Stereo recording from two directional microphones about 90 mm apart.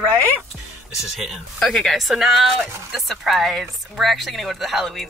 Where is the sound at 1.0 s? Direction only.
Centre (ahead or behind).